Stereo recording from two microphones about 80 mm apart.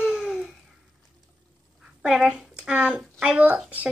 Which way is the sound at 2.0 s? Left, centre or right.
Centre.